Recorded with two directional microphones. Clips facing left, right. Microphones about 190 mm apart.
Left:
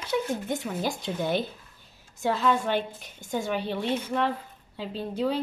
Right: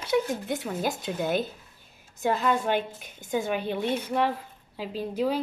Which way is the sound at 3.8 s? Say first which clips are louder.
Right 2 dB; 10° right (ahead or behind).